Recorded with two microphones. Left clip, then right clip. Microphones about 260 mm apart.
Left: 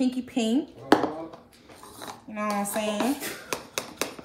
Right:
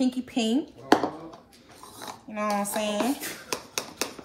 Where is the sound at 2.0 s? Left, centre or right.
Centre.